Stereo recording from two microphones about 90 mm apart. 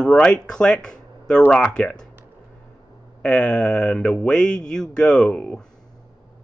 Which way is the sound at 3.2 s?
10° left (ahead or behind).